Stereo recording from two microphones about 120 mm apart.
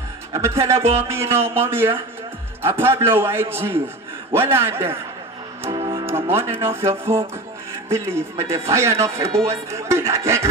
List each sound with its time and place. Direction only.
0.3 s speech: 25° right (ahead or behind)
5.7 s music: 45° right (ahead or behind)
6.0 s music: 20° right (ahead or behind)
6.9 s speech: 20° right (ahead or behind)